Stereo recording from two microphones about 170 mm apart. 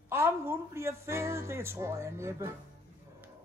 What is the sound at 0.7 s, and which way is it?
Speech, 15° right (ahead or behind).